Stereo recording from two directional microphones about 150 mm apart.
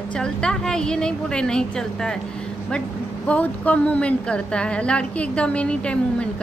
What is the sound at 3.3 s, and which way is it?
A woman's voice, 10° left (ahead or behind).